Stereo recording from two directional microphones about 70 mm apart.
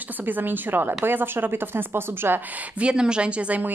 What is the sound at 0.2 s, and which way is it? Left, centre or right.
Speech, right.